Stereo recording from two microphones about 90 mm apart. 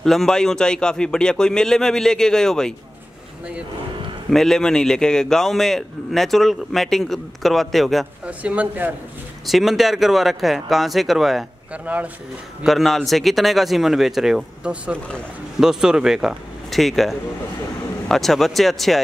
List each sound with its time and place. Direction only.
0.0 s a man's voice: 5° left (ahead or behind)
4.3 s a man's voice: 5° left (ahead or behind)
8.3 s speech: 15° right (ahead or behind)
9.5 s a man's voice: centre (ahead or behind)
11.7 s speech: 15° right (ahead or behind)
12.6 s a man's voice: centre (ahead or behind)